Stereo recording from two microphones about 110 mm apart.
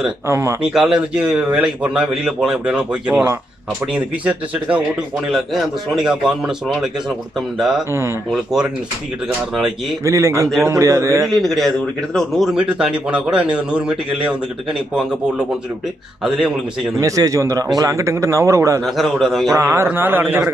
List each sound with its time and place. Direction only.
0.3 s speech: 25° right (ahead or behind)
0.6 s a man's voice: 5° right (ahead or behind)
10.0 s speech: 25° right (ahead or behind)
11.2 s a man's voice: centre (ahead or behind)
12.5 s a man's voice: 10° right (ahead or behind)
17.0 s speech: 30° right (ahead or behind)
18.9 s a man's voice: centre (ahead or behind)
19.5 s speech: 25° right (ahead or behind)